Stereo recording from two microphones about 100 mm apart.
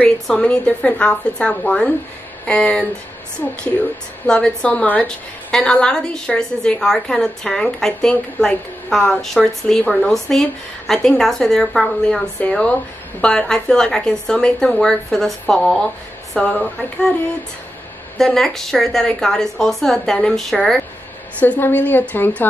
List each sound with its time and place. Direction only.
0.0 s a woman's voice: 10° left (ahead or behind)
4.3 s a woman's voice: 10° left (ahead or behind)
18.1 s a woman's voice: 5° left (ahead or behind)
21.4 s a woman's voice: 20° left (ahead or behind)